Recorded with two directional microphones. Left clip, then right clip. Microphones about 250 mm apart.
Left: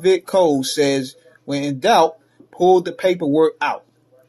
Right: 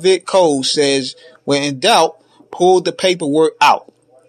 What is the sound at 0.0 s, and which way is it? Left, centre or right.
A man's voice, right.